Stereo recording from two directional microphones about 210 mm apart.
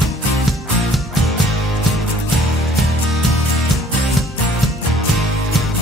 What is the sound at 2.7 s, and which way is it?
Music, centre (ahead or behind).